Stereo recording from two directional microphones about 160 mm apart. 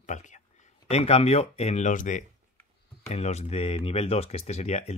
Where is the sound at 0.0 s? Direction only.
50° left (ahead or behind).